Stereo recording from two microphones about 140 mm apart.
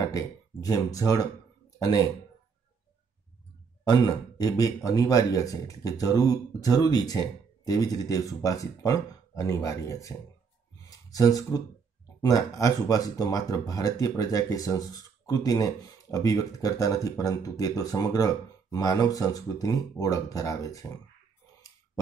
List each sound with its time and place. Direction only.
0.1 s speech: 25° left (ahead or behind)
3.8 s speech: 25° left (ahead or behind)
10.8 s a sound: 25° left (ahead or behind)
12.2 s speech: 25° left (ahead or behind)